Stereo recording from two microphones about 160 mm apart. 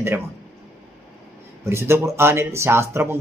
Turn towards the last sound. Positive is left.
turn(degrees=-15)  # may be behind; listen again after turning